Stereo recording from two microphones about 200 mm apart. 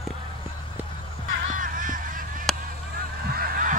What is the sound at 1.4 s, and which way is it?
Music, 40° right (ahead or behind).